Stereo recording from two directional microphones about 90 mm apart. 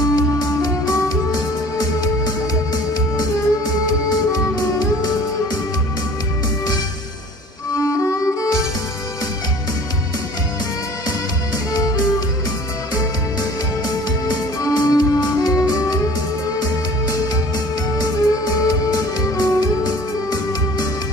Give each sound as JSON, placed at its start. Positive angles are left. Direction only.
{"t": 0.1, "sound": "music", "side_deg": 45}
{"t": 7.7, "sound": "music", "side_deg": 40}
{"t": 11.1, "sound": "music", "side_deg": 45}
{"t": 13.8, "sound": "music", "side_deg": 50}
{"t": 17.9, "sound": "music", "side_deg": 50}